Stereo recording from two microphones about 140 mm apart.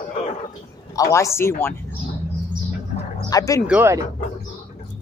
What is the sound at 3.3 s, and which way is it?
Speech, 25° left (ahead or behind).